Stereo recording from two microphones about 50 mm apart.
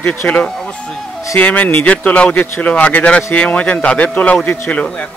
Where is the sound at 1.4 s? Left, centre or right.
Left.